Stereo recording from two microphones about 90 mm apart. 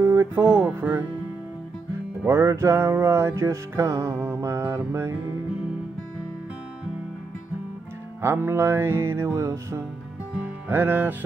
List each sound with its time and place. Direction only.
0.0 s speech: 30° right (ahead or behind)
2.2 s music: 30° right (ahead or behind)
8.2 s music: 25° right (ahead or behind)
10.3 s music: 20° right (ahead or behind)